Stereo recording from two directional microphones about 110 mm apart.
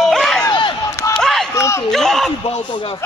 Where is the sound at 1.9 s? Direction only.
5° left (ahead or behind).